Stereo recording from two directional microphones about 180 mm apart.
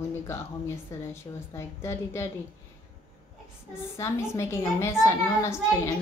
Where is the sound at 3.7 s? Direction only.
15° left (ahead or behind).